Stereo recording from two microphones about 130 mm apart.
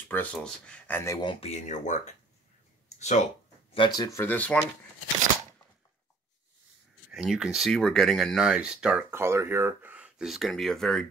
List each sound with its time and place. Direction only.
0.1 s speech: 10° left (ahead or behind)
1.2 s speech: 40° left (ahead or behind)
1.5 s speech: 70° left (ahead or behind)
3.7 s speech: 35° left (ahead or behind)
4.2 s speech: 10° left (ahead or behind)
7.1 s speech: 5° right (ahead or behind)
9.1 s speech: 20° right (ahead or behind); by 11.1 s 5° left (ahead or behind)